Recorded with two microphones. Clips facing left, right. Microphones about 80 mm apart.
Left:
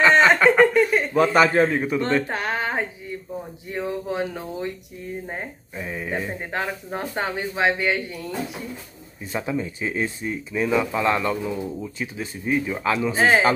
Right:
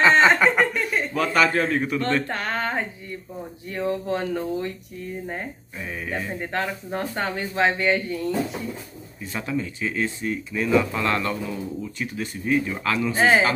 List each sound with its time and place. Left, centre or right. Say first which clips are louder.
0.1 s snicker: left 1 dB; centre
0.6 s speech: left 6 dB; centre
1.1 s a man's voice: left 3 dB; left
1.9 s speech: left 2 dB; centre
9.3 s speech: left 2 dB; left
13.2 s speech: even; centre